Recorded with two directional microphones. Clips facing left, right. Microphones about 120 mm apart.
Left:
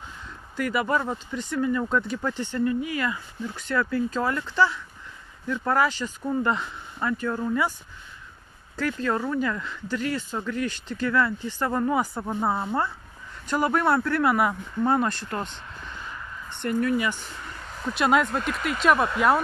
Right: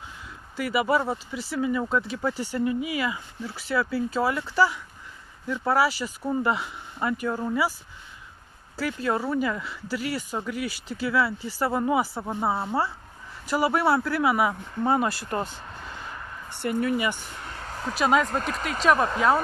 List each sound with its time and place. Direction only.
0.6 s speech: 5° right (ahead or behind)
8.7 s speech: 10° right (ahead or behind)
16.4 s a sound: 10° right (ahead or behind)
16.8 s speech: 5° right (ahead or behind)
17.4 s vehicle: 55° right (ahead or behind)
17.9 s speech: centre (ahead or behind)
18.3 s speech: 40° right (ahead or behind)